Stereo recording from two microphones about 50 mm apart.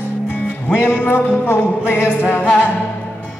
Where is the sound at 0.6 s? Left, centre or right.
Left.